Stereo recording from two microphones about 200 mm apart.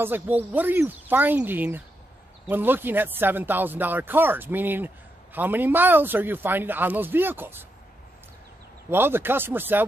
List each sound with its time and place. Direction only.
0.0 s speech: 10° right (ahead or behind)
8.9 s speech: 10° right (ahead or behind)